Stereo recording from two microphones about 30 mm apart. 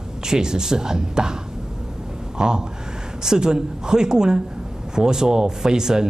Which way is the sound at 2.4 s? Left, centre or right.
Right.